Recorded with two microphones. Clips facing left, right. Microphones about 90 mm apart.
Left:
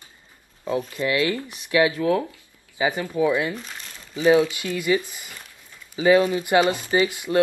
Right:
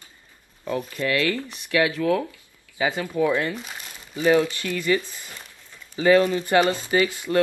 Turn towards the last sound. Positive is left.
turn(degrees=20)  # may be behind; listen again after turning